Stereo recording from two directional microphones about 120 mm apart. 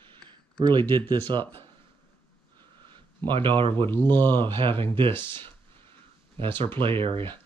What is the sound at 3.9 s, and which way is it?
Speech, 15° left (ahead or behind).